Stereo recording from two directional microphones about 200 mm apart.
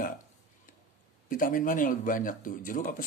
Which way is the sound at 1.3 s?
45° left (ahead or behind).